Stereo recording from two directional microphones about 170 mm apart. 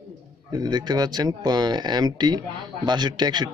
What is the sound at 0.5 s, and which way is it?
Speech, 25° right (ahead or behind).